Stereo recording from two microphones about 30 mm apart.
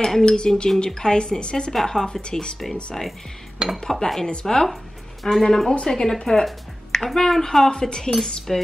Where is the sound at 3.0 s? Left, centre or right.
Centre.